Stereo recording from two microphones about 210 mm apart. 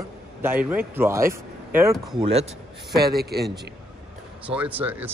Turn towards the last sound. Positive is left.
turn(degrees=-10)  # may be behind; listen again after turning